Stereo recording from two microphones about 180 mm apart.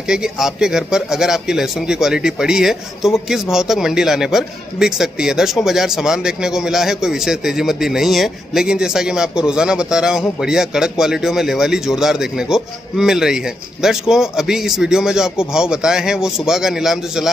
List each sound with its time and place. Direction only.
0.1 s a man's voice: 5° right (ahead or behind)